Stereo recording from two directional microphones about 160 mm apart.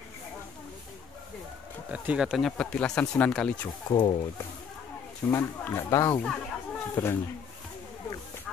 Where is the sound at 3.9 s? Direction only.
30° left (ahead or behind).